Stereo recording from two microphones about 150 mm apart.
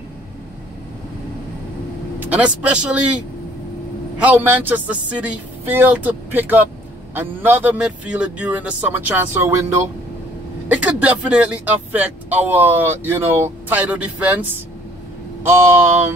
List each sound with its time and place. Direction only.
2.1 s a man's voice: 10° right (ahead or behind)
4.2 s speech: 10° right (ahead or behind)